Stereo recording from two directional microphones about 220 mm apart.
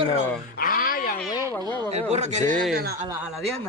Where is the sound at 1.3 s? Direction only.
15° left (ahead or behind).